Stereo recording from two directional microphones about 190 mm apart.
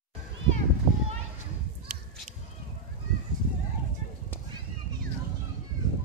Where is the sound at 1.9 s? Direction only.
45° right (ahead or behind).